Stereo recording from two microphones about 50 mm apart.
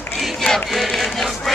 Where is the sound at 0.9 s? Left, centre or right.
Centre.